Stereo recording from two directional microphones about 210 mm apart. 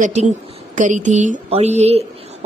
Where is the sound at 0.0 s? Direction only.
30° right (ahead or behind).